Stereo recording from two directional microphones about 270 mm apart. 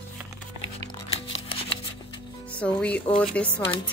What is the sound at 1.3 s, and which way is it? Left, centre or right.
Shuffling cards, left.